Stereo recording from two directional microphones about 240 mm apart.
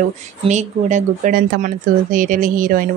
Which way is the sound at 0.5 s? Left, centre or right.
Right.